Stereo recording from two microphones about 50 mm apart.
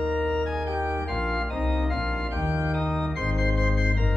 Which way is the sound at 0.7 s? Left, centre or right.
Centre.